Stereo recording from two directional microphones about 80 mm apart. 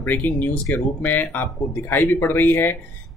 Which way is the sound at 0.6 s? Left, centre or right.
Left.